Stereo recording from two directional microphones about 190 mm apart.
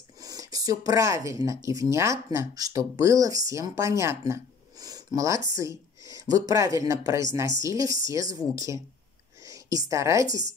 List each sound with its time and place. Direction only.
0.2 s a woman's voice: 20° right (ahead or behind)